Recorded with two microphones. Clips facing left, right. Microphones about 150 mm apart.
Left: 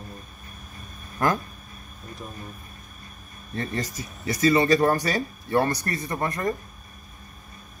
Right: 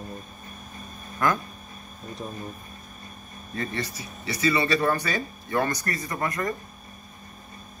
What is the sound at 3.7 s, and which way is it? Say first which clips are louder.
Speech: left 2 dB; 45° left (ahead or behind).